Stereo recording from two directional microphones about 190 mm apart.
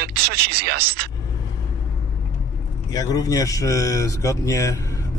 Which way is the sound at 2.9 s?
20° left (ahead or behind).